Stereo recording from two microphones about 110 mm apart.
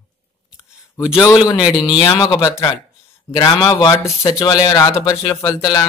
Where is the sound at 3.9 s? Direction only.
30° left (ahead or behind).